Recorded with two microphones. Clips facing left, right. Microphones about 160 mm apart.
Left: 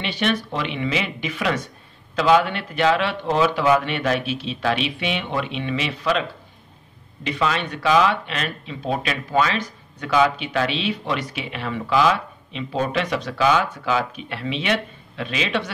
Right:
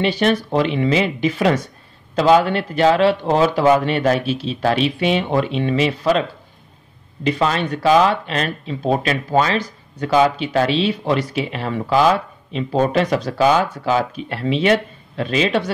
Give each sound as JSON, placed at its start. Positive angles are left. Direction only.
{"t": 0.0, "sound": "speech", "side_deg": -40}
{"t": 7.2, "sound": "speech", "side_deg": -40}